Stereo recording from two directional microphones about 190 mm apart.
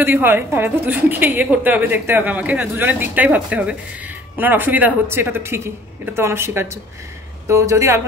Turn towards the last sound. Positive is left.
turn(degrees=-15)  # may be behind; listen again after turning